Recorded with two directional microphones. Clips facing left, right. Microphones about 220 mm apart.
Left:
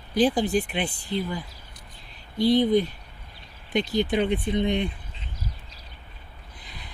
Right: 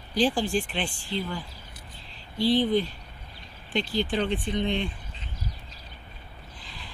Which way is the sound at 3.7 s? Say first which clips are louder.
Left 3 dB; 20° left (ahead or behind).